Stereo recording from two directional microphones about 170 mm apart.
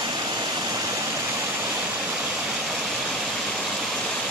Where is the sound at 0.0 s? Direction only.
25° right (ahead or behind).